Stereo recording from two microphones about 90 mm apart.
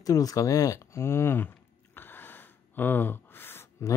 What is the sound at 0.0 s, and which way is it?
Speech, 40° left (ahead or behind).